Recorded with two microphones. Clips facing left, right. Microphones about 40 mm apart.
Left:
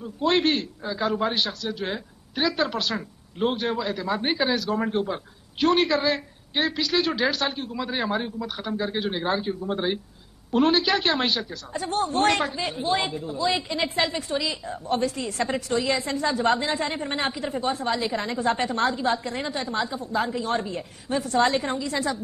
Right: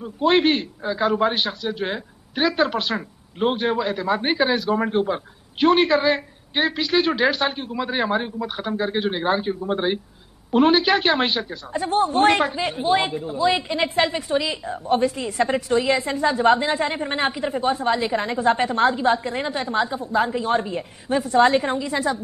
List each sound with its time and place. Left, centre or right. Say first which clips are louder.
0.0 s a man's voice: right 4 dB; centre